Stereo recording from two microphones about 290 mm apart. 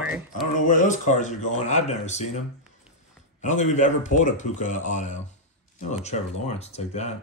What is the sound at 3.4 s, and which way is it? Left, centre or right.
Speech, left.